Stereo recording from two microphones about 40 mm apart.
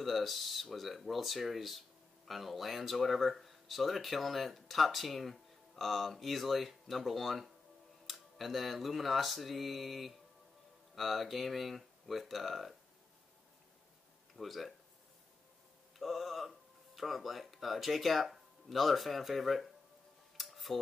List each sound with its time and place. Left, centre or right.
0.0 s speech: centre
14.3 s speech: centre
16.0 s speech: centre
20.3 s a sound: centre